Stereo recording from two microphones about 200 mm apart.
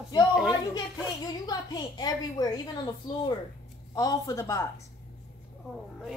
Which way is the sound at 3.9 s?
20° left (ahead or behind).